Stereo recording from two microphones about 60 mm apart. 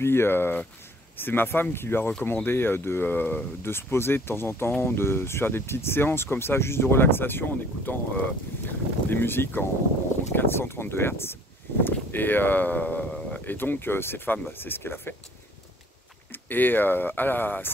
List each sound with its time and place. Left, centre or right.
0.0 s speech: left
16.3 s speech: left